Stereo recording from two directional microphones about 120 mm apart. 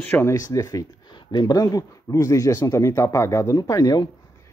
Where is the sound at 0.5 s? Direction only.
25° left (ahead or behind).